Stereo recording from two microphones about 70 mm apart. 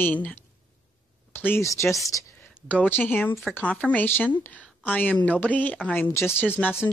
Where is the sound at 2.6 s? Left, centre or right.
Centre.